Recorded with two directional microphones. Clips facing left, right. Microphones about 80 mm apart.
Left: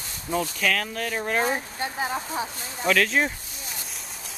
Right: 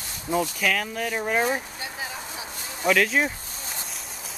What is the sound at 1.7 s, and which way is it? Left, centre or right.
Speech, left.